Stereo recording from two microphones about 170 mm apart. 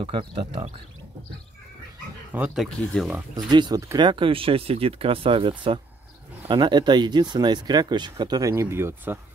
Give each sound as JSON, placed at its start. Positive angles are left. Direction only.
{"t": 0.0, "sound": "speech", "side_deg": -30}
{"t": 2.3, "sound": "speech", "side_deg": -5}
{"t": 3.4, "sound": "speech", "side_deg": -25}